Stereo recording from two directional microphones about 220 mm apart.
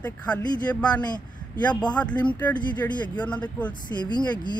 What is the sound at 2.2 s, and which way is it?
Speech, 10° left (ahead or behind).